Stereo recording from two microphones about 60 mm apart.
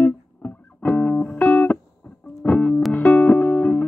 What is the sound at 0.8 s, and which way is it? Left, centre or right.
Music, left.